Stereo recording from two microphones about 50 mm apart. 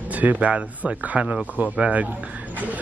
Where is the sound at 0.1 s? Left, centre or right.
Right.